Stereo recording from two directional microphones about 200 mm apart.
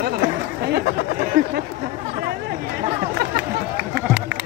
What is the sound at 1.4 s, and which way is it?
Speech, 45° right (ahead or behind).